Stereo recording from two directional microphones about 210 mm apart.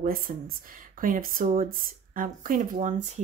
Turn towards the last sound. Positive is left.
turn(degrees=-35)  # may be behind; listen again after turning